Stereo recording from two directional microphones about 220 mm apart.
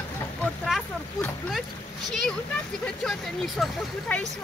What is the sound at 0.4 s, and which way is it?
Vehicle, 5° left (ahead or behind).